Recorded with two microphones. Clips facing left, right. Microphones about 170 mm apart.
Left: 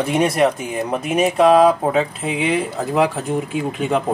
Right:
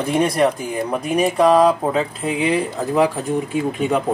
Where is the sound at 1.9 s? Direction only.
5° left (ahead or behind).